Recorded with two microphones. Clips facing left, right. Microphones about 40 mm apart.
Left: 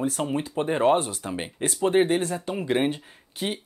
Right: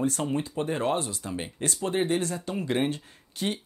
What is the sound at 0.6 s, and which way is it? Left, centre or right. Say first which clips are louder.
Speech: left 9 dB; left.